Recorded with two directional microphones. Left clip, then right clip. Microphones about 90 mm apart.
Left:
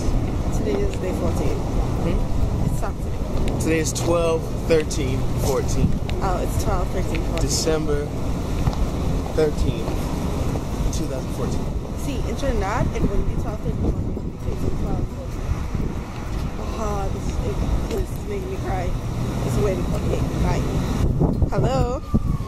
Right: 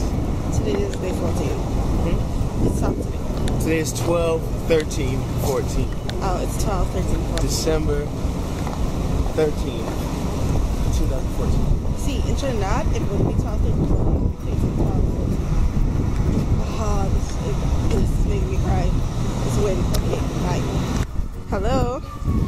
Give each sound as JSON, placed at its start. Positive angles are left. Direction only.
{"t": 0.7, "sound": "speech", "side_deg": 0}
{"t": 3.6, "sound": "speech", "side_deg": 25}
{"t": 7.4, "sound": "speech", "side_deg": 20}
{"t": 9.4, "sound": "speech", "side_deg": 25}
{"t": 12.4, "sound": "speech", "side_deg": 5}
{"t": 19.6, "sound": "speech", "side_deg": 0}